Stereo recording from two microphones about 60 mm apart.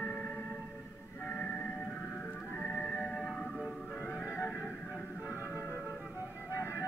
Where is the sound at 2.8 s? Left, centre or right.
Centre.